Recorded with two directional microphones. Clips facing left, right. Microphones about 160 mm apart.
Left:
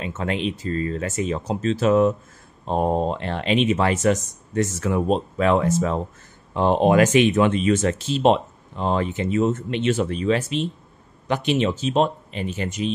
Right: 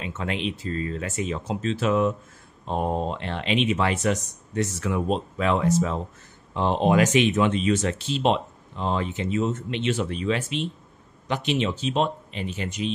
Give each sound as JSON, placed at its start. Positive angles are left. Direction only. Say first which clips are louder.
{"t": 0.0, "sound": "speech", "louder": "left 4 dB", "side_deg": 40}